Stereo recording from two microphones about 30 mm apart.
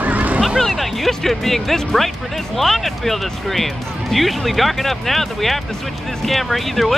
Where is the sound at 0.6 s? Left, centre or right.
Centre.